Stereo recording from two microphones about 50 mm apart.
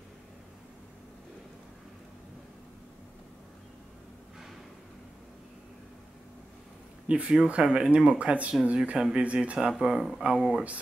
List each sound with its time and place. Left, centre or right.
7.1 s speech: right